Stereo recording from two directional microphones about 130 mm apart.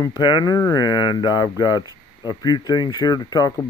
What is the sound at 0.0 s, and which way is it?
Speech, 30° left (ahead or behind).